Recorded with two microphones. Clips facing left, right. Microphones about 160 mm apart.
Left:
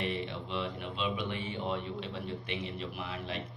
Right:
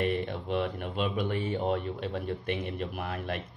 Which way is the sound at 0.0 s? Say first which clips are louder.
Right 6 dB; 50° right (ahead or behind).